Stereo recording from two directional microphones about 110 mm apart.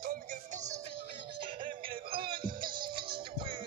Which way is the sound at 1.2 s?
50° right (ahead or behind).